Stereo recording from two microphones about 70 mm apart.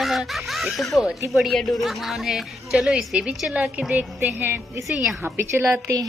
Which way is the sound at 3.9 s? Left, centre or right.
Right.